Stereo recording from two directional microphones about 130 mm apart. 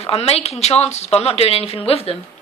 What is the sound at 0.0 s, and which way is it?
Speech, 50° left (ahead or behind).